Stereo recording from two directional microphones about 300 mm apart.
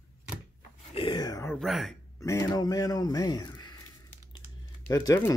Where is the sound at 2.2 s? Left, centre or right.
Centre.